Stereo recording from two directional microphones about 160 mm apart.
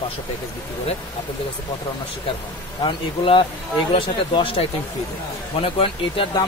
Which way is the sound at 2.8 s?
30° left (ahead or behind).